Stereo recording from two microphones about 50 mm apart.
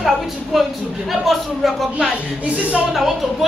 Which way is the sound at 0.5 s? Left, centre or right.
Centre.